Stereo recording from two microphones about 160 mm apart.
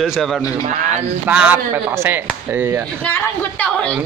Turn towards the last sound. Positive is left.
turn(degrees=10)  # may be behind; listen again after turning